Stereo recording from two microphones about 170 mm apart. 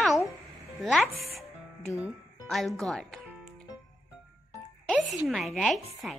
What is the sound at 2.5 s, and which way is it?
Speech, centre (ahead or behind).